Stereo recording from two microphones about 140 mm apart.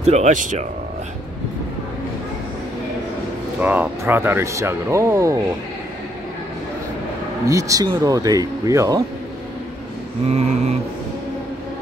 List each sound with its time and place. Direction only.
0.0 s speech: 55° right (ahead or behind)
3.5 s speech: 10° right (ahead or behind)
7.4 s speech: 25° right (ahead or behind)
10.2 s mantra: 50° right (ahead or behind)